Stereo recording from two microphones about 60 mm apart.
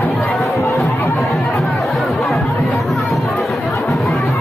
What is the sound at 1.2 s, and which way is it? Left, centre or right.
Chatter, centre.